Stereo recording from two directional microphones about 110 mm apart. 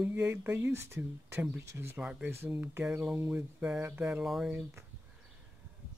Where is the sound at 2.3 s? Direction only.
20° right (ahead or behind).